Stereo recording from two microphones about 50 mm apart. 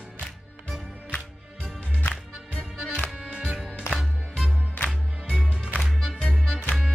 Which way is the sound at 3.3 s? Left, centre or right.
Centre.